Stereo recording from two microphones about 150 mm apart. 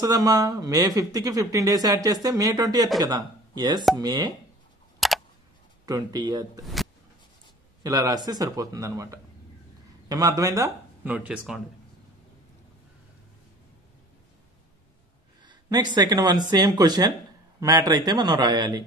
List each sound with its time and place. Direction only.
0.0 s speech: 25° right (ahead or behind)
5.0 s a sound: centre (ahead or behind)
5.9 s speech: 25° right (ahead or behind)
7.8 s speech: 25° right (ahead or behind)
11.1 s speech: 5° right (ahead or behind)
15.4 s speech: 30° right (ahead or behind)